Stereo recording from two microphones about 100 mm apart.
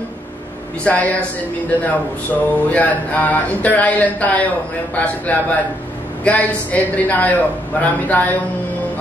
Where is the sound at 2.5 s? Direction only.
15° left (ahead or behind).